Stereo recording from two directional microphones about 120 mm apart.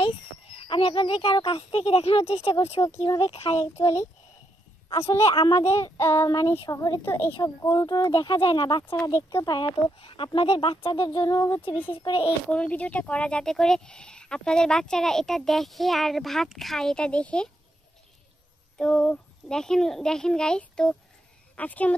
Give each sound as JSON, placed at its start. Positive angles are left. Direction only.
{"t": 0.0, "sound": "speech", "side_deg": 50}
{"t": 2.8, "sound": "speech", "side_deg": 35}
{"t": 3.2, "sound": "speech", "side_deg": 55}
{"t": 3.8, "sound": "child singing", "side_deg": 25}
{"t": 6.6, "sound": "speech", "side_deg": 30}
{"t": 7.1, "sound": "child singing", "side_deg": 20}
{"t": 7.3, "sound": "speech", "side_deg": 35}
{"t": 9.1, "sound": "speech", "side_deg": 30}
{"t": 9.9, "sound": "speech", "side_deg": 50}
{"t": 11.7, "sound": "speech", "side_deg": 15}
{"t": 12.0, "sound": "speech", "side_deg": 45}
{"t": 12.4, "sound": "speech", "side_deg": 10}
{"t": 18.8, "sound": "speech", "side_deg": 10}